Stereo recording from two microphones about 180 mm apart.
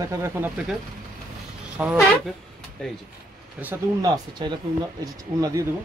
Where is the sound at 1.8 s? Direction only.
10° right (ahead or behind).